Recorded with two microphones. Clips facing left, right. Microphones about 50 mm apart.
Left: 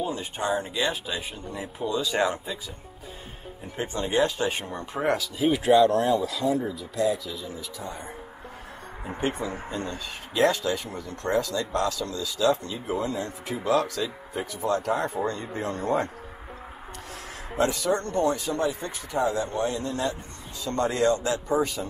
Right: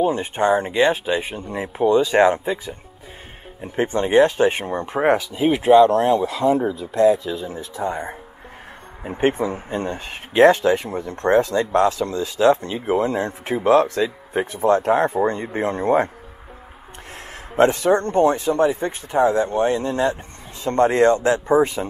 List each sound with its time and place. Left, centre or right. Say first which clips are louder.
0.0 s speech: right 10 dB; right
9.2 s speech: right 9 dB; right
17.6 s speech: right 9 dB; right